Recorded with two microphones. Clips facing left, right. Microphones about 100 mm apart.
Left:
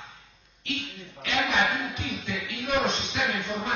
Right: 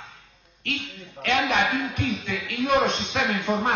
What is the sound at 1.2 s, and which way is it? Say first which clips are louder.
A man's voice: right 3 dB; 60° right (ahead or behind).